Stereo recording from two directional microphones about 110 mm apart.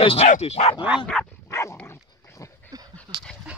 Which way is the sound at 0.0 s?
65° left (ahead or behind).